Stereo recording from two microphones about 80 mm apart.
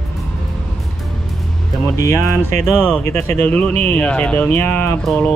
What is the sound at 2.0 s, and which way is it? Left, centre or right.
Speech, left.